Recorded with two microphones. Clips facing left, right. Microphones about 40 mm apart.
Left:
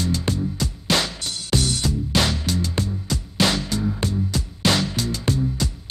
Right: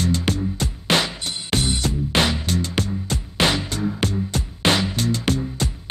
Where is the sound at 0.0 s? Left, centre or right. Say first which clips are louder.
Right 2 dB; right.